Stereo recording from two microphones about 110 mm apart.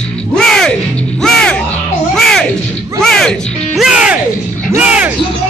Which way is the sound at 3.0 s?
5° left (ahead or behind).